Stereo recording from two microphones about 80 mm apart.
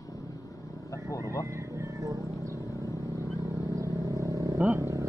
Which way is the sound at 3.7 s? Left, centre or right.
Right.